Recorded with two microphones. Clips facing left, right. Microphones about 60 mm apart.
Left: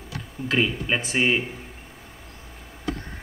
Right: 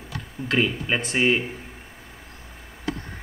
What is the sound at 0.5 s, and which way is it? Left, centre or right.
Speech, centre.